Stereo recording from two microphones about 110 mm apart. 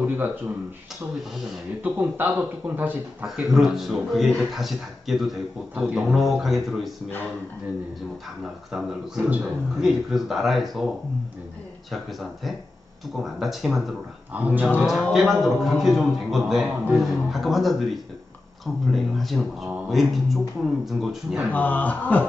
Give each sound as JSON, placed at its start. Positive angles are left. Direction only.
{"t": 0.0, "sound": "a sound", "side_deg": -15}
{"t": 1.8, "sound": "speech", "side_deg": -15}
{"t": 3.3, "sound": "speech", "side_deg": -5}
{"t": 8.7, "sound": "speech", "side_deg": -10}
{"t": 11.9, "sound": "speech", "side_deg": 0}
{"t": 14.3, "sound": "speech", "side_deg": -15}
{"t": 14.8, "sound": "speech", "side_deg": 0}
{"t": 21.5, "sound": "a man's voice", "side_deg": 15}